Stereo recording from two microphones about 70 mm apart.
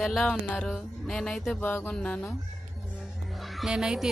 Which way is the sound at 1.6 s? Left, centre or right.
Left.